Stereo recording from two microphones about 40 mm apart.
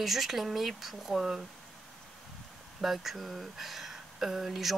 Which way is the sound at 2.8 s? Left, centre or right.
Centre.